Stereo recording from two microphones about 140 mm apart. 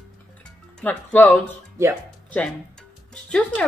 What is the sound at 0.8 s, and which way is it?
Speech, 10° left (ahead or behind).